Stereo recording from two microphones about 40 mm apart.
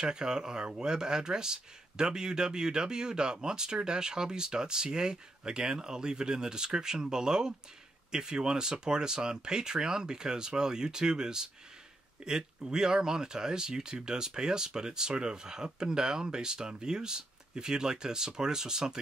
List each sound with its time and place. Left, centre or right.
0.0 s speech: centre